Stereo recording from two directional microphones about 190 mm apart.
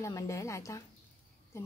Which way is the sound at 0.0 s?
15° left (ahead or behind).